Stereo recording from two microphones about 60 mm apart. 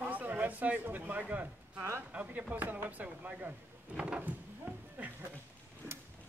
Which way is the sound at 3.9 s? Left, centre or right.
Centre.